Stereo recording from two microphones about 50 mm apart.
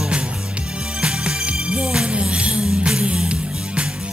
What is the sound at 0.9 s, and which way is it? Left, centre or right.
Music, centre.